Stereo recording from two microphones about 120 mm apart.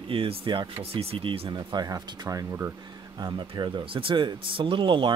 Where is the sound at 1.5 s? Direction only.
35° right (ahead or behind).